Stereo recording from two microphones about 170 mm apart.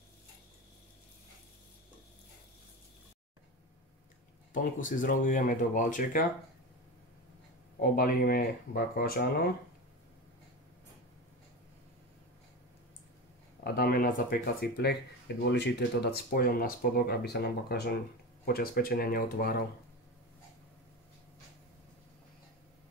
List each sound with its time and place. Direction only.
4.7 s speech: 50° left (ahead or behind)
7.8 s speech: 60° left (ahead or behind)
13.7 s speech: 60° left (ahead or behind)
15.4 s speech: 90° left; by 19.6 s 60° left (ahead or behind)